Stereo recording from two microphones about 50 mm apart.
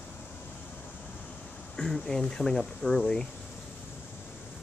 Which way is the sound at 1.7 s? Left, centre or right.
Centre.